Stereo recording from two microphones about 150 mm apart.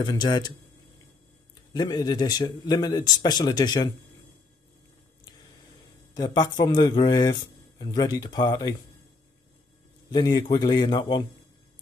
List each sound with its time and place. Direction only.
0.0 s a man's voice: 25° left (ahead or behind)
1.7 s a man's voice: 25° left (ahead or behind)
6.1 s a man's voice: 25° left (ahead or behind)
10.1 s a man's voice: 25° left (ahead or behind)